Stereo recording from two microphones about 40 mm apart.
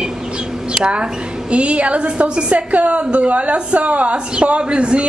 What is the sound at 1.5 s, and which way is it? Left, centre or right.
A woman's voice, right.